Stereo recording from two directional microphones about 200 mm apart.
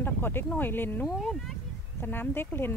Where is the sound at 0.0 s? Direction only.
10° left (ahead or behind).